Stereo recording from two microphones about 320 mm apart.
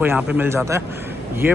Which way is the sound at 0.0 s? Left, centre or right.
Centre.